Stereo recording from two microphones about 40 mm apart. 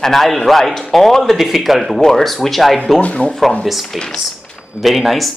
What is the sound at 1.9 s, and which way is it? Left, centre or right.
Speech, centre.